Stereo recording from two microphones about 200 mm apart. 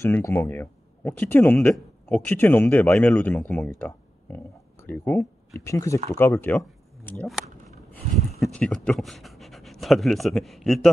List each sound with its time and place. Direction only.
0.0 s speech: 15° left (ahead or behind)